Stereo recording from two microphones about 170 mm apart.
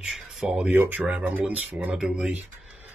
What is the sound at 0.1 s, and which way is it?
Beatboxing, centre (ahead or behind).